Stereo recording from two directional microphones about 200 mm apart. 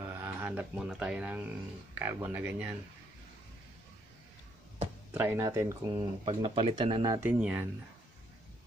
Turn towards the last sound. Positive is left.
turn(degrees=-5)  # may be behind; listen again after turning